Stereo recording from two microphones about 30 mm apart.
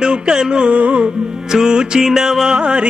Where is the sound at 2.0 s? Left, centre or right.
Centre.